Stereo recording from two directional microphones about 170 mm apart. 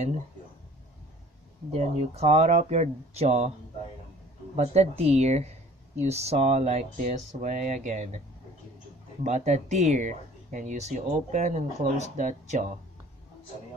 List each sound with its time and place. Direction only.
1.7 s speech: 40° right (ahead or behind)
4.6 s speech: 40° right (ahead or behind)
9.2 s speech: 45° right (ahead or behind)